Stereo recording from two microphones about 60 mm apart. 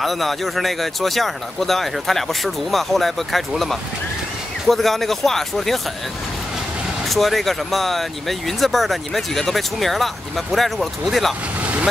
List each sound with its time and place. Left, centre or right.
0.0 s speech: centre
7.1 s speech: centre
11.6 s vehicle: right